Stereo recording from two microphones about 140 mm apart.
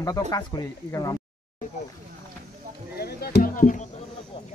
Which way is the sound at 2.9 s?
90° left.